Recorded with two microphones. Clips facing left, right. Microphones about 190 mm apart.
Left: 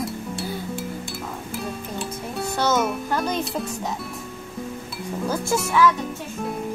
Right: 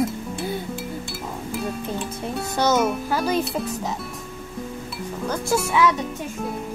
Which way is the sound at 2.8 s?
5° right (ahead or behind).